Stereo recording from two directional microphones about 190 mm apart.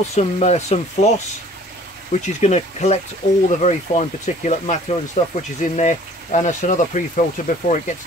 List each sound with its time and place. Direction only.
0.1 s speech: 35° left (ahead or behind)
2.1 s speech: 35° left (ahead or behind)